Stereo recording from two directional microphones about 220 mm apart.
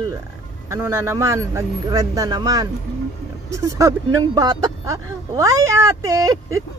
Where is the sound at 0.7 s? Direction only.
15° right (ahead or behind).